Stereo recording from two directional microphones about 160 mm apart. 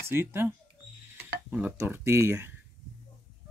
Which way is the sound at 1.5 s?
10° right (ahead or behind).